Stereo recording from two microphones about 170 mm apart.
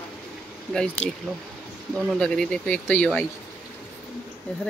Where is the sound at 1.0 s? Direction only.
40° left (ahead or behind).